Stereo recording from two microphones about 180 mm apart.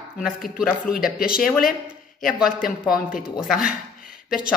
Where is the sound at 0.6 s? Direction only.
5° right (ahead or behind).